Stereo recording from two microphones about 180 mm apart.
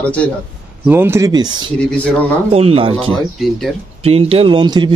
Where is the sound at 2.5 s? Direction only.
35° right (ahead or behind).